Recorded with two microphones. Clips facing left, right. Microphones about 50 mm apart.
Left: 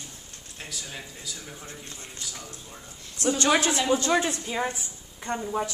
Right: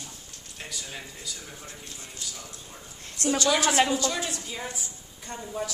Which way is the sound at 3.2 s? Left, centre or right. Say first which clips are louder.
Left 1 dB; left.